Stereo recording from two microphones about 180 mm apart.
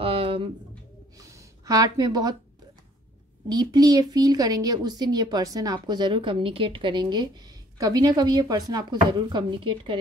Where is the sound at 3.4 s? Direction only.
20° right (ahead or behind).